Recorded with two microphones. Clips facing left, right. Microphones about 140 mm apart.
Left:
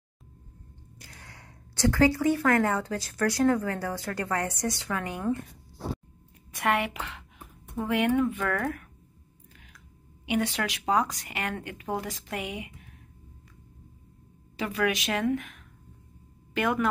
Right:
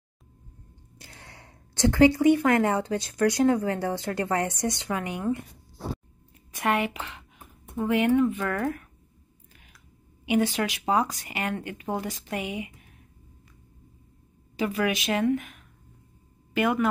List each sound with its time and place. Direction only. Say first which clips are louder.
0.9 s a woman's voice: right 2 dB; 25° right (ahead or behind)
6.5 s a woman's voice: right 1 dB; centre (ahead or behind)
10.2 s speech: right 4 dB; 5° right (ahead or behind)
14.6 s speech: right 2 dB; centre (ahead or behind)